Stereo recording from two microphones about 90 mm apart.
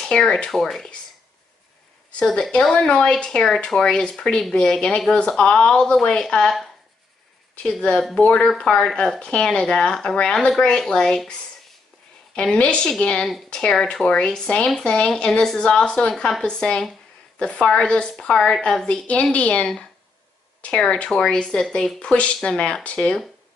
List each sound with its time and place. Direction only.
0.0 s speech: 10° left (ahead or behind)
2.0 s speech: 10° left (ahead or behind)
8.2 s speech: 15° left (ahead or behind)
12.4 s speech: 15° left (ahead or behind)